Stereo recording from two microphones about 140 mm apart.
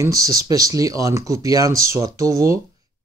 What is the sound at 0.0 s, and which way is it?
Speech, 25° right (ahead or behind).